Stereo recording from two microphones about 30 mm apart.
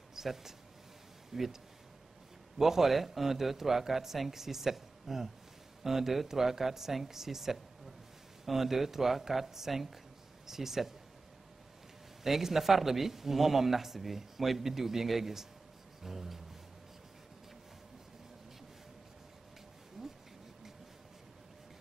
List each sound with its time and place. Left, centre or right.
0.1 s a man's voice: centre
2.6 s a man's voice: centre
12.2 s a man's voice: centre
20.0 s a sound: centre